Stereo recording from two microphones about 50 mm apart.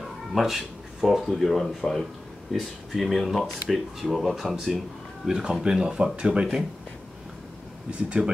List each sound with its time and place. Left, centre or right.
0.3 s speech: centre
8.2 s speech: right